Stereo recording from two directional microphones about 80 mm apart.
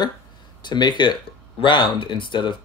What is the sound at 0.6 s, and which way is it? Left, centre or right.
Speech, left.